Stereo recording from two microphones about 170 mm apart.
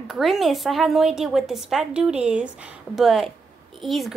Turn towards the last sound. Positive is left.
turn(degrees=0)  # may be behind; listen again after turning